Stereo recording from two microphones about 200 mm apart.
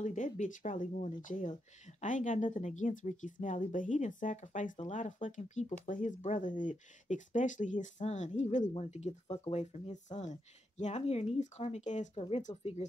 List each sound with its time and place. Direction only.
0.0 s speech: 40° left (ahead or behind)